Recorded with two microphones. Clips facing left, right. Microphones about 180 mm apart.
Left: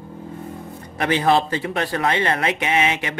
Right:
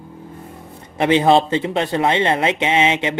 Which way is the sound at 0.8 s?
25° right (ahead or behind).